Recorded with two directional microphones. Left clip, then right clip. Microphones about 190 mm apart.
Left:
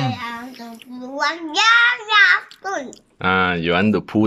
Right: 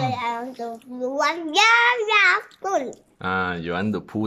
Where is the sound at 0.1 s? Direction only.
20° right (ahead or behind).